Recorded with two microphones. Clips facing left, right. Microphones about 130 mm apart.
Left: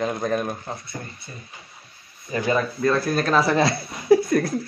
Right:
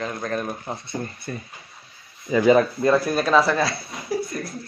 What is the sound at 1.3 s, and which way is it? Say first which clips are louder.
Speech: right 9 dB; 65° right (ahead or behind).